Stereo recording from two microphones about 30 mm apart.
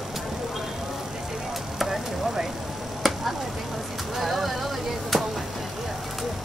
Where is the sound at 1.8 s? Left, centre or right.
Centre.